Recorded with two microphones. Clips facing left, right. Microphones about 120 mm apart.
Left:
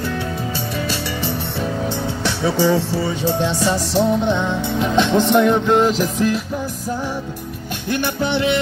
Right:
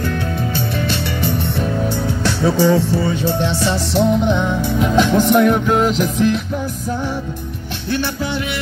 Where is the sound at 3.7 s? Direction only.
35° left (ahead or behind).